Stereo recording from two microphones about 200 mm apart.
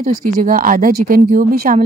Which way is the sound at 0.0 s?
45° right (ahead or behind).